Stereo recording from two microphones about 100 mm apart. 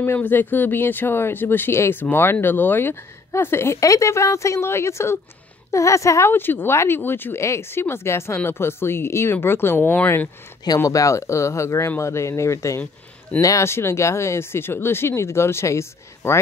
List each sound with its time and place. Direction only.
0.0 s speech: 20° left (ahead or behind)
10.8 s speech: 35° left (ahead or behind)